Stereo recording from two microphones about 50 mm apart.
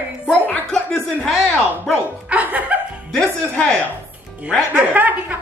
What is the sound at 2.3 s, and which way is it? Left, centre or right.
Speech, right.